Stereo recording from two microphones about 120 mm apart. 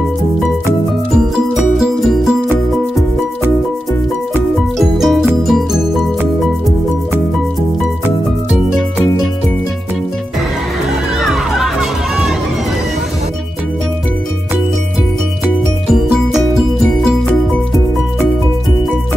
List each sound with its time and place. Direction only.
4.7 s music: centre (ahead or behind)
11.2 s music: 5° right (ahead or behind)